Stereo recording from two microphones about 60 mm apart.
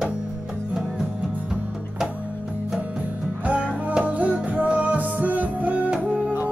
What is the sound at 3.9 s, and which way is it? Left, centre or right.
Music, right.